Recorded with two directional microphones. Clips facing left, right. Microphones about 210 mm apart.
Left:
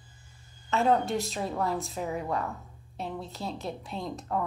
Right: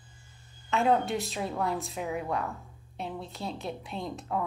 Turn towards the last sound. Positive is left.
turn(degrees=0)  # may be behind; listen again after turning